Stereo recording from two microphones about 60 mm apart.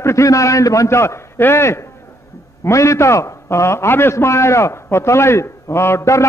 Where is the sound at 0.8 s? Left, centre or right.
Left.